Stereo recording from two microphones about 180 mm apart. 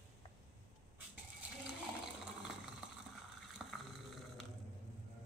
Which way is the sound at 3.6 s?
5° right (ahead or behind).